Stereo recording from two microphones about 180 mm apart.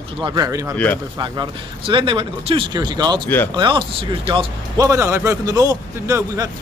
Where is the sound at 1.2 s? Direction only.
25° right (ahead or behind).